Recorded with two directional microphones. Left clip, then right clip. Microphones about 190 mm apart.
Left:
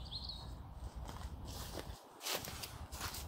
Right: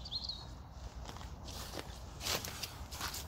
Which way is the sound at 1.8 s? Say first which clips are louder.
Right 3 dB; 20° right (ahead or behind).